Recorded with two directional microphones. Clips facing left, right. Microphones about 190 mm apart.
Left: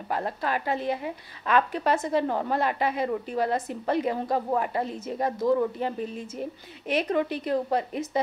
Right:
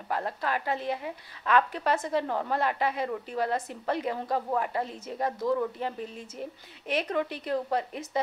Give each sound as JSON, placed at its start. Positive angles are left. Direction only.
{"t": 0.1, "sound": "a woman's voice", "side_deg": 15}
{"t": 6.9, "sound": "a woman's voice", "side_deg": 15}